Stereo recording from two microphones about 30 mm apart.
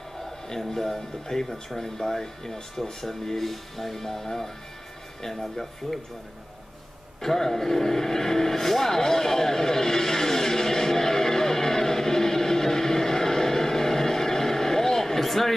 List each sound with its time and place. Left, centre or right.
0.5 s speech: centre
2.0 s speech: centre
7.2 s vehicle: centre